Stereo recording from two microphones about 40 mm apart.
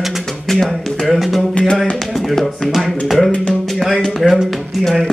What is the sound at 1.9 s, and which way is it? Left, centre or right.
Speech, centre.